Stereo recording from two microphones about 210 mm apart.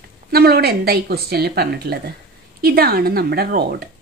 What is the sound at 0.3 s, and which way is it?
A woman's voice, 45° right (ahead or behind).